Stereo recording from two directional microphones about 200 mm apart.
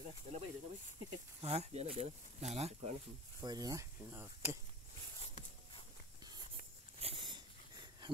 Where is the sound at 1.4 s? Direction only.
30° right (ahead or behind).